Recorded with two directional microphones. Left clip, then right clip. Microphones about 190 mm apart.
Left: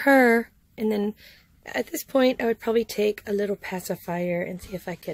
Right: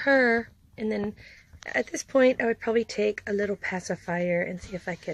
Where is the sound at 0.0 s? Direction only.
45° left (ahead or behind).